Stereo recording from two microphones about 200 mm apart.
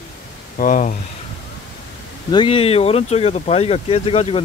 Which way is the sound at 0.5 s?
40° left (ahead or behind).